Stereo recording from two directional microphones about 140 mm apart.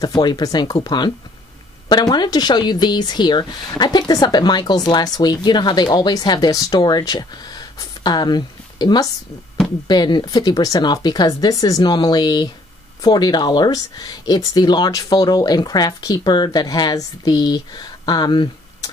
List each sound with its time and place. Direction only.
0.0 s speech: 30° left (ahead or behind)